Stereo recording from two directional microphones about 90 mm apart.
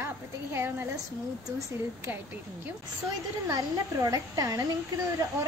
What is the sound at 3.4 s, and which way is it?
A woman's voice, 40° right (ahead or behind).